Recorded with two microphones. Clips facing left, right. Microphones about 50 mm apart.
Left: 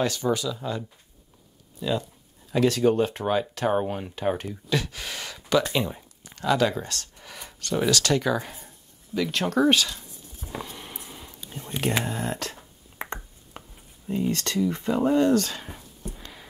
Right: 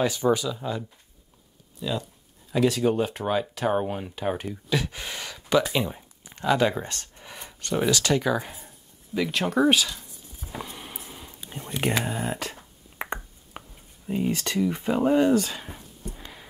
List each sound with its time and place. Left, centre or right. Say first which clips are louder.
0.0 s speech: right 2 dB; centre
1.8 s speech: left 3 dB; centre
6.2 s a sound: even; centre
11.4 s whispering: right 1 dB; right
12.0 s speech: even; centre
16.2 s a sound: right 1 dB; centre